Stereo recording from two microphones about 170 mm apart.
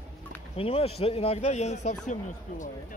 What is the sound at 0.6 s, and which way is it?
Speech, 35° left (ahead or behind).